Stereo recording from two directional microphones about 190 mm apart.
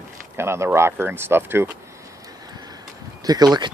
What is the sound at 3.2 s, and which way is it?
Speech, 20° right (ahead or behind).